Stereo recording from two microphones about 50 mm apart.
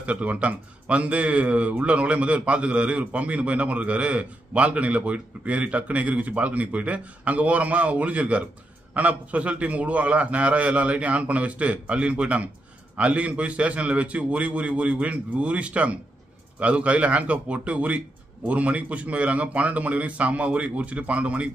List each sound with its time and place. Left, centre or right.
0.0 s speech: right